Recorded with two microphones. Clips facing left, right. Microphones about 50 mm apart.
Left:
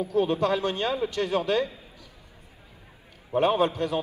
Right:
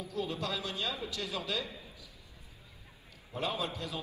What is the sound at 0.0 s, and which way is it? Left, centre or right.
A man's voice, left.